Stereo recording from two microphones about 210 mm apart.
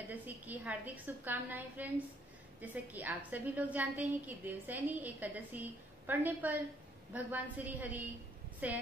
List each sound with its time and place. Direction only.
0.1 s a woman's voice: 5° right (ahead or behind)